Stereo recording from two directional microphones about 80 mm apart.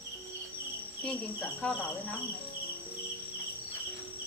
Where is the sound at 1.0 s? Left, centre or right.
Centre.